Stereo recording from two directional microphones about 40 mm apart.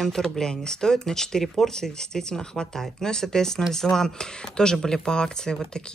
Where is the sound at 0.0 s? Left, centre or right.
Centre.